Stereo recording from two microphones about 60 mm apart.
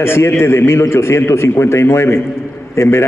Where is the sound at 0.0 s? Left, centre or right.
Left.